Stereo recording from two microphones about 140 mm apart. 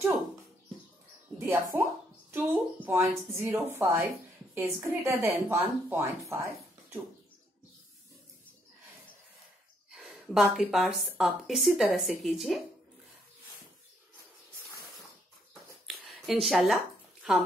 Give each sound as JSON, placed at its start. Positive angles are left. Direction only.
{"t": 1.4, "sound": "a woman's voice", "side_deg": -10}
{"t": 9.8, "sound": "a woman's voice", "side_deg": 0}
{"t": 15.9, "sound": "a sound", "side_deg": 0}
{"t": 16.4, "sound": "speech", "side_deg": 0}